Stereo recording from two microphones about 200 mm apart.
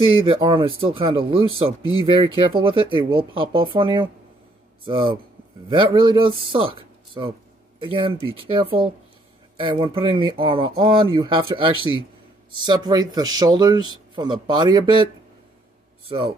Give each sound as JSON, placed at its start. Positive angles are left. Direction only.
{"t": 0.1, "sound": "speech", "side_deg": -25}
{"t": 16.1, "sound": "speech", "side_deg": -25}